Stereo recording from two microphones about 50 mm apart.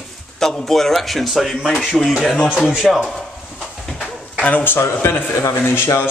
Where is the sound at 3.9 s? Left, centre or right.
Centre.